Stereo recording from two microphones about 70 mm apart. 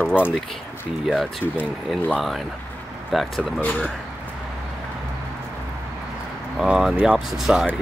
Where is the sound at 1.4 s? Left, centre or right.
Left.